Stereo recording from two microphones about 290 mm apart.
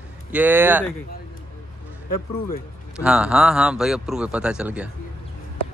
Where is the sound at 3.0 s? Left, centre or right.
Centre.